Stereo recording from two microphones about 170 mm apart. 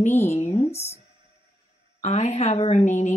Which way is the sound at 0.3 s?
40° left (ahead or behind).